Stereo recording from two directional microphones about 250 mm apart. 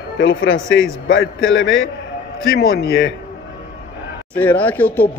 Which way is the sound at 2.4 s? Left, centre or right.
Left.